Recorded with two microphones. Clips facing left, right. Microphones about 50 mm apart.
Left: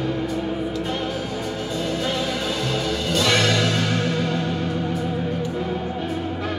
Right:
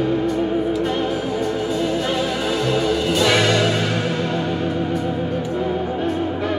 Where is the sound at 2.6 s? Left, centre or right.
Centre.